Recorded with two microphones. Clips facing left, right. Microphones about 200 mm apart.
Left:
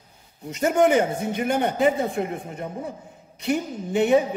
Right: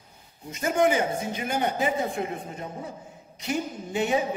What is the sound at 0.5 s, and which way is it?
A man's voice, 65° left (ahead or behind).